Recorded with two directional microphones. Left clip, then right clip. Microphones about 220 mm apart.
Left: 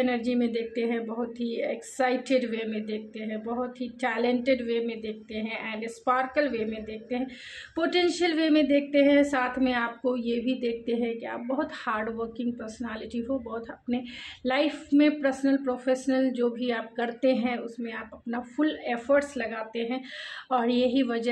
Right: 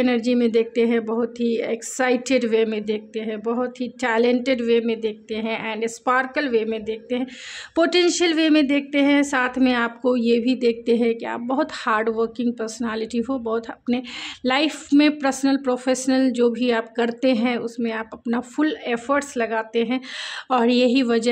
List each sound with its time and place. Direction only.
0.0 s speech: 50° right (ahead or behind)